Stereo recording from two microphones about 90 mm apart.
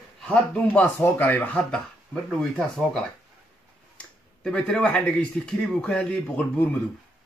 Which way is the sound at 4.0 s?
10° left (ahead or behind).